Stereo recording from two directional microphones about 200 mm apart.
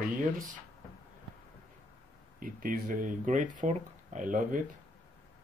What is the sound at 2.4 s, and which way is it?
Speech, 45° right (ahead or behind).